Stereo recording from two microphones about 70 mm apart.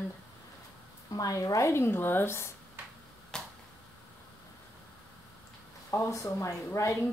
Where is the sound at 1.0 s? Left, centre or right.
Left.